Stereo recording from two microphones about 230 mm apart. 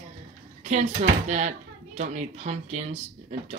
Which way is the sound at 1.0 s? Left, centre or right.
Right.